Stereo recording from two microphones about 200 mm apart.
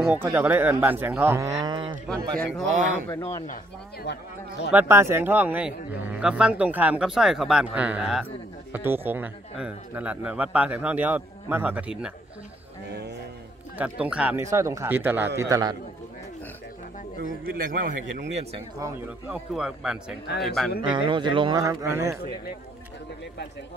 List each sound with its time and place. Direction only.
0.0 s speech: 10° right (ahead or behind)
1.6 s speech: 25° right (ahead or behind)
3.1 s speech: 15° left (ahead or behind)
4.0 s speech: 60° left (ahead or behind)
4.7 s speech: 10° right (ahead or behind)
13.7 s speech: 5° right (ahead or behind)
17.2 s a man's voice: 45° right (ahead or behind)
18.3 s speech: 30° right (ahead or behind)
18.8 s speech: 5° right (ahead or behind)
20.9 s speech: 25° right (ahead or behind)